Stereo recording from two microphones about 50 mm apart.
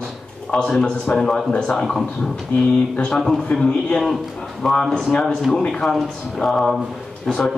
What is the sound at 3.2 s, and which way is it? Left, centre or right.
Speech, centre.